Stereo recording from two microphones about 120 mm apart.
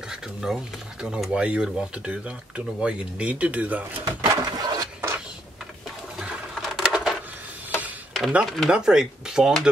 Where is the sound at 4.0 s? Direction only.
35° right (ahead or behind).